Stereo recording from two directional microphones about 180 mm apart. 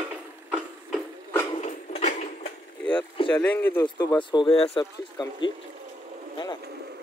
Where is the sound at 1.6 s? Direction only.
40° left (ahead or behind).